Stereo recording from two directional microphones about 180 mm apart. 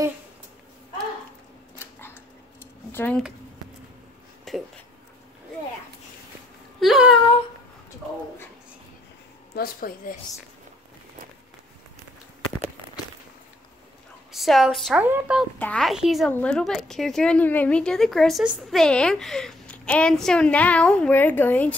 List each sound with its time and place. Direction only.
2.6 s a sound: 10° left (ahead or behind)
4.5 s speech: centre (ahead or behind)
6.8 s a sound: centre (ahead or behind)
9.6 s speech: 50° left (ahead or behind)
14.3 s a woman's voice: centre (ahead or behind)
15.6 s a woman's voice: 5° left (ahead or behind)